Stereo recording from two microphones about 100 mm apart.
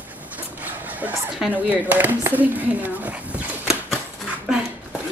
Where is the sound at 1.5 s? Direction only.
15° right (ahead or behind).